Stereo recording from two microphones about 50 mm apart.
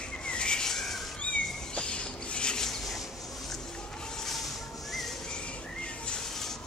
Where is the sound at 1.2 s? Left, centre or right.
Left.